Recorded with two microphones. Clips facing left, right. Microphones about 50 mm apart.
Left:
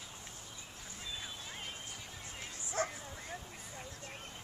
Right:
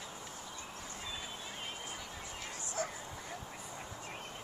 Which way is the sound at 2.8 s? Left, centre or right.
Left.